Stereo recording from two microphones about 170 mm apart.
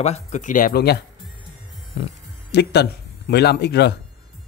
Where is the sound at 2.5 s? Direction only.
80° left.